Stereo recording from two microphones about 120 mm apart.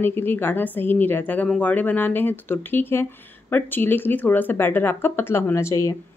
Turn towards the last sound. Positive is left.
turn(degrees=25)  # may be behind; listen again after turning